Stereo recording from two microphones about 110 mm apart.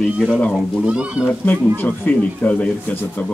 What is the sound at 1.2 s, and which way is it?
Speech, 15° left (ahead or behind).